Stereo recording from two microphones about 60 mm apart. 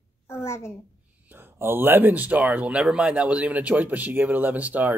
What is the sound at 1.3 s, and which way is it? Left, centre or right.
Speech, right.